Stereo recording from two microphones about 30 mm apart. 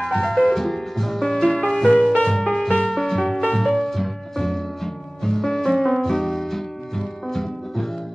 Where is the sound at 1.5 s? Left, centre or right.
Left.